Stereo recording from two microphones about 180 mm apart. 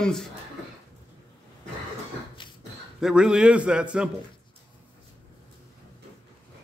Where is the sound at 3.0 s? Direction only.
5° right (ahead or behind).